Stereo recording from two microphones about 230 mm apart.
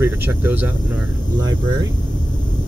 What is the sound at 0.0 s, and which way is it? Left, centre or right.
Speech, centre.